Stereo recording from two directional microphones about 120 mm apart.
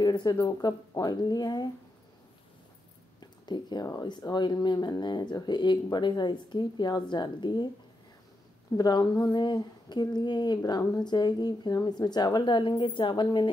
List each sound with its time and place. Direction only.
0.0 s speech: 35° left (ahead or behind)
3.2 s speech: 35° left (ahead or behind)
8.7 s speech: 35° left (ahead or behind)